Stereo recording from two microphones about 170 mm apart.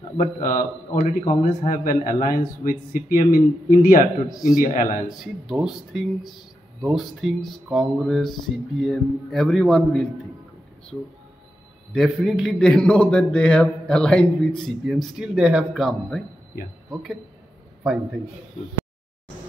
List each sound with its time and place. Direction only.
0.2 s speech: 55° left (ahead or behind)
5.2 s a man's voice: centre (ahead or behind)
11.9 s a man's voice: centre (ahead or behind)